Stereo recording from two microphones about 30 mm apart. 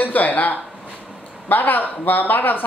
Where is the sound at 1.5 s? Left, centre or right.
Left.